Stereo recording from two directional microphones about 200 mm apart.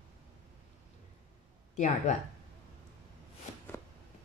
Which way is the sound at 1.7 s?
35° left (ahead or behind).